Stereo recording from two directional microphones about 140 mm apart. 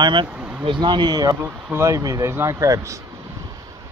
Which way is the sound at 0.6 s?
35° right (ahead or behind).